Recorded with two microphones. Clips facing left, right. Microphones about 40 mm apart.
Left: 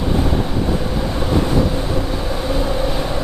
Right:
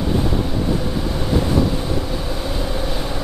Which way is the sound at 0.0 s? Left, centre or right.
Centre.